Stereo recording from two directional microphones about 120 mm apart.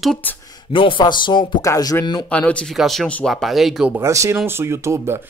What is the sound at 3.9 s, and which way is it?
Speech, 25° right (ahead or behind).